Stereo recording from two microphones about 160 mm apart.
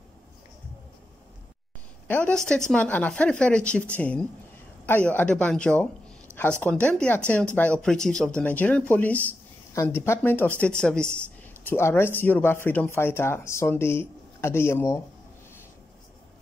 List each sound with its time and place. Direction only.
2.0 s speech: 10° left (ahead or behind)